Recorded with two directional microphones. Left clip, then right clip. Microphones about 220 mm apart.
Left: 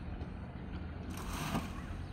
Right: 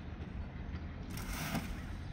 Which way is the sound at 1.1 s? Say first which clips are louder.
Left 1 dB; 40° right (ahead or behind).